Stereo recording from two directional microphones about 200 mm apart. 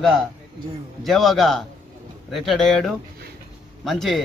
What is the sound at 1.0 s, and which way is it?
A man's voice, centre (ahead or behind).